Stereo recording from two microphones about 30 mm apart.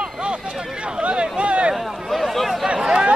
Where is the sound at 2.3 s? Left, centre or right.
Centre.